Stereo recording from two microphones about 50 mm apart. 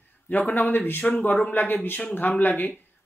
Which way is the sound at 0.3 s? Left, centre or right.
Left.